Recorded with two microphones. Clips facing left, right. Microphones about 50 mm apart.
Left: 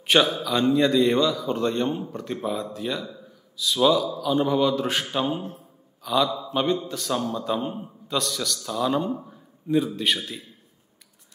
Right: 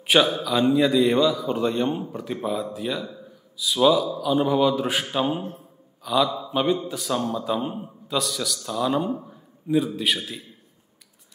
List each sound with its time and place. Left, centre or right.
0.0 s a man's voice: centre
6.0 s a man's voice: centre